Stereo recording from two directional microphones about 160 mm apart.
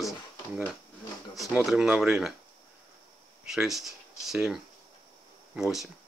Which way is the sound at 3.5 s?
Centre (ahead or behind).